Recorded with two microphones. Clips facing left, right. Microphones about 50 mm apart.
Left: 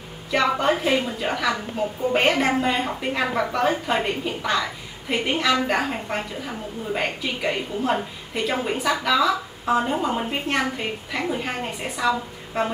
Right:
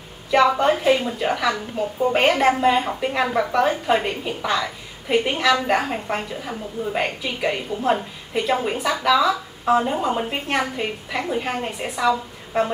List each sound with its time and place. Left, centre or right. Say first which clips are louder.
0.3 s a woman's voice: right 4 dB; centre